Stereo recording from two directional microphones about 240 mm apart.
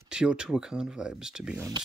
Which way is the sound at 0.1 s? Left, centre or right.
Centre.